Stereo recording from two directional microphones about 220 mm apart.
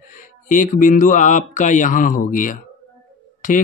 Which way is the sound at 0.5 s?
35° left (ahead or behind).